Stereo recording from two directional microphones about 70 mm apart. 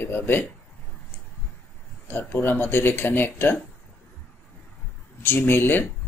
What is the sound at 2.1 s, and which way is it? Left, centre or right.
Speech, left.